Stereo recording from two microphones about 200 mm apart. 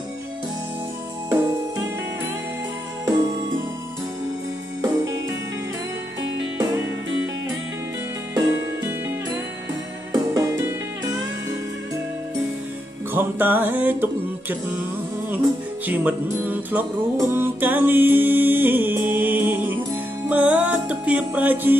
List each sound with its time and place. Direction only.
4.8 s music: 15° right (ahead or behind)
6.6 s music: 15° right (ahead or behind)
8.4 s music: 15° right (ahead or behind)
13.1 s music: 10° right (ahead or behind)
15.9 s music: 10° right (ahead or behind)